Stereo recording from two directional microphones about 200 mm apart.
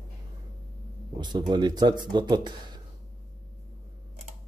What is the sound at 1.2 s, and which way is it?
Speech, 20° right (ahead or behind).